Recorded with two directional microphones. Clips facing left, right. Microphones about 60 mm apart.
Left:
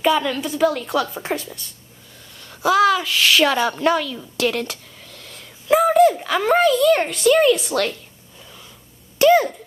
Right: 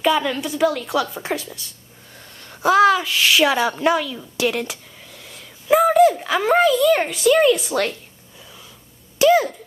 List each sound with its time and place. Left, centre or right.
0.0 s a woman's voice: centre
2.3 s a woman's voice: right; by 7.7 s centre
7.7 s a woman's voice: right
9.2 s a sound: centre